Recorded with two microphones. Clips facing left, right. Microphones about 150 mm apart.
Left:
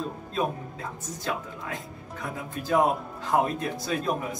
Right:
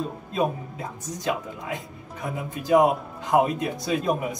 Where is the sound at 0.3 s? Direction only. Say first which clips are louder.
Right 4 dB; 15° right (ahead or behind).